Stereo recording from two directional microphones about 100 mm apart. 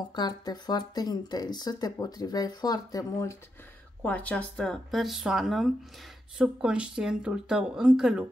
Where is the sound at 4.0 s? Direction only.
15° left (ahead or behind).